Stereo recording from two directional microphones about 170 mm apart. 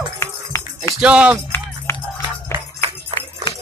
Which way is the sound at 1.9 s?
15° left (ahead or behind).